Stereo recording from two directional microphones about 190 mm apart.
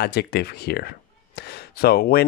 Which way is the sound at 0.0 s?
55° left (ahead or behind).